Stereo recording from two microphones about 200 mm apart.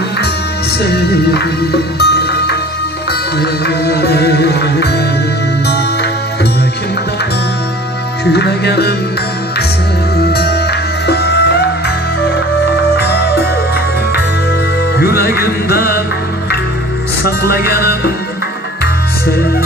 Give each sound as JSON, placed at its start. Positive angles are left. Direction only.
{"t": 0.9, "sound": "music", "side_deg": 55}
{"t": 8.3, "sound": "music", "side_deg": 55}
{"t": 10.1, "sound": "music", "side_deg": 55}
{"t": 15.0, "sound": "music", "side_deg": 50}
{"t": 17.2, "sound": "music", "side_deg": 50}